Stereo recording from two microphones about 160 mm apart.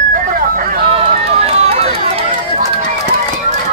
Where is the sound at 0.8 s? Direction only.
35° right (ahead or behind).